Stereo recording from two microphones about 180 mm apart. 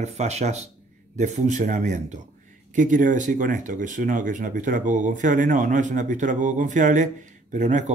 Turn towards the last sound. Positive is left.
turn(degrees=-40)  # may be behind; listen again after turning